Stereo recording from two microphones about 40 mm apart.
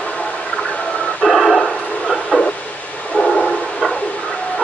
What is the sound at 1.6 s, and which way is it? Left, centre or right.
Bow-wow, left.